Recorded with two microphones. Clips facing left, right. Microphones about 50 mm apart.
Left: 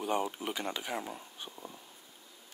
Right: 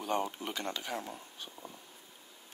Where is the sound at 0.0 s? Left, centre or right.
Centre.